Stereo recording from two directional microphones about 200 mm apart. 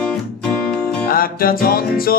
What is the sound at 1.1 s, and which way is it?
Music, 45° left (ahead or behind).